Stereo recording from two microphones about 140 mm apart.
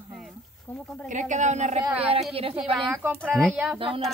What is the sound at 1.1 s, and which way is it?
Speech, 60° right (ahead or behind).